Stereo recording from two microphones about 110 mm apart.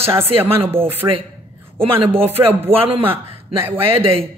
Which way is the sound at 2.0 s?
60° right (ahead or behind).